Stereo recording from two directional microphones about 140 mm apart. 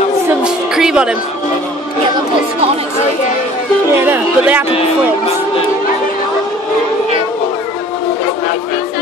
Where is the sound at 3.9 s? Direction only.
15° right (ahead or behind).